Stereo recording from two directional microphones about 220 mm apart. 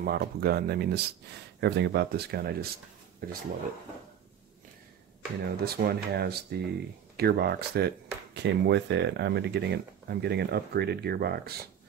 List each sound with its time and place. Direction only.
0.0 s speech: 45° right (ahead or behind)
5.4 s speech: 45° right (ahead or behind)